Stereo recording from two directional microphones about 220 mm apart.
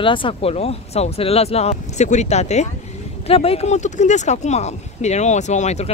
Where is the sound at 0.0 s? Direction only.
20° left (ahead or behind).